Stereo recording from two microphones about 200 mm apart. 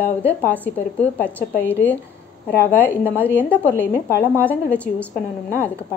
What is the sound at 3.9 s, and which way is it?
Speech, 50° left (ahead or behind).